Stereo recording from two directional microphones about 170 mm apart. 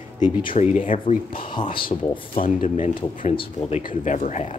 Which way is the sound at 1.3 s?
30° left (ahead or behind).